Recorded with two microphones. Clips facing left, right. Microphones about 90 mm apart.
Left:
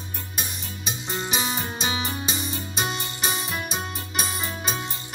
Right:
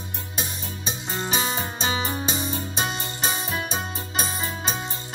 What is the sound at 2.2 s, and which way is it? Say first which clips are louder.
Music: right 3 dB; 35° right (ahead or behind).